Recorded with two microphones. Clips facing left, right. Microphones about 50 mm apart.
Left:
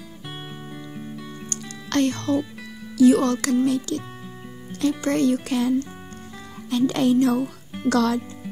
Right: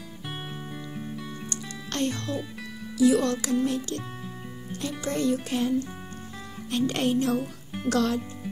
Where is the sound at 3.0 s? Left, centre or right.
Left.